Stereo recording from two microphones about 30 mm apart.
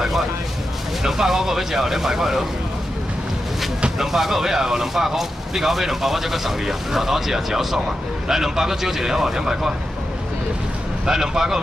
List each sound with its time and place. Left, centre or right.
1.0 s speech: centre
4.0 s speech: centre
11.1 s speech: centre